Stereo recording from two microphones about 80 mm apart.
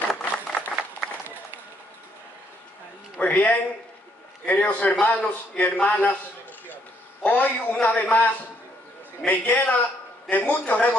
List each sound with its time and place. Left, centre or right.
0.1 s a sound: centre
3.2 s a man's voice: centre
7.2 s a man's voice: centre